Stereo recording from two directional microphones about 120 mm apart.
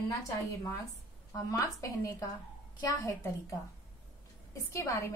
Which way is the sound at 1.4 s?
30° left (ahead or behind).